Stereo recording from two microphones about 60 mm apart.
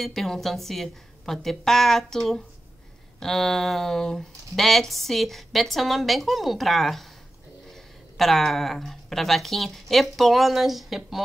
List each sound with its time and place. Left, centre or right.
0.0 s speech: centre